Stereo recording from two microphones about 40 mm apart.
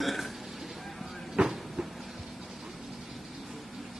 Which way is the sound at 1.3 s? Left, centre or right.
Centre.